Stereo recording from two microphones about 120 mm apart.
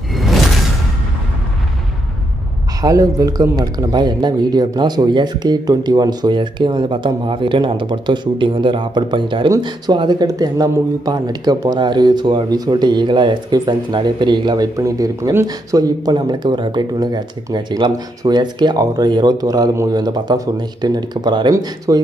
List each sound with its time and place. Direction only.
0.1 s music: centre (ahead or behind)
2.8 s speech: 30° right (ahead or behind)